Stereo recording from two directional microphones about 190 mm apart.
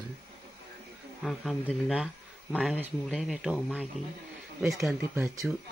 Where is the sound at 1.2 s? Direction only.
Centre (ahead or behind).